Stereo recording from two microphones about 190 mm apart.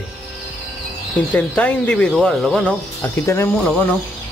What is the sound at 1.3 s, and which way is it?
Speech, 5° left (ahead or behind).